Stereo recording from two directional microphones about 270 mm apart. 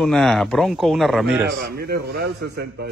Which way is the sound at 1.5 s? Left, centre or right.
Right.